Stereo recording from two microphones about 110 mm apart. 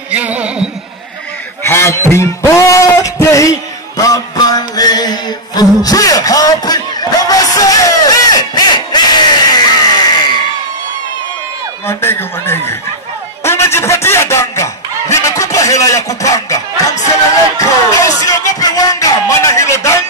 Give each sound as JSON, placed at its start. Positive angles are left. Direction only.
{"t": 0.1, "sound": "music", "side_deg": -15}
{"t": 1.6, "sound": "a sound", "side_deg": 25}
{"t": 4.0, "sound": "mantra", "side_deg": 35}
{"t": 11.9, "sound": "speech", "side_deg": 20}
{"t": 13.4, "sound": "snicker", "side_deg": 25}
{"t": 17.6, "sound": "music", "side_deg": 30}